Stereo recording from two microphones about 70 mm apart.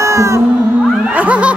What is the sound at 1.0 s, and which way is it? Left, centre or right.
Music, right.